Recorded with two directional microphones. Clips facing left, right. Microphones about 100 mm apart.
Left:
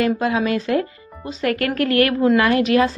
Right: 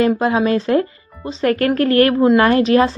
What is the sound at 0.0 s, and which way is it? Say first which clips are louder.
Speech: right 4 dB; 30° right (ahead or behind).